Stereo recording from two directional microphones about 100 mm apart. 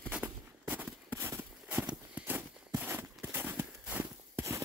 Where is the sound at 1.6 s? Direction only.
15° right (ahead or behind).